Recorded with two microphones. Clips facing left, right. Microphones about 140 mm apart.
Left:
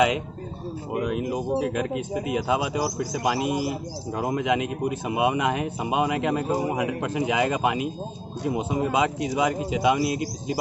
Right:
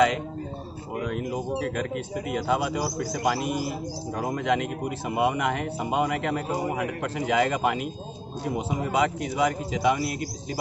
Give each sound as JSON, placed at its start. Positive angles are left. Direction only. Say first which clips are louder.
{"t": 0.9, "sound": "speech", "louder": "left 3 dB", "side_deg": 20}